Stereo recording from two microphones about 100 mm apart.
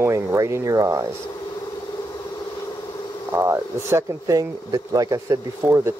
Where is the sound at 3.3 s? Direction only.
25° right (ahead or behind).